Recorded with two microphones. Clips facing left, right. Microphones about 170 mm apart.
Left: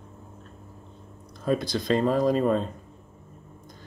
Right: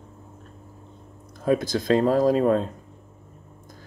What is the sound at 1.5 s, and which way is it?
Speech, 50° right (ahead or behind).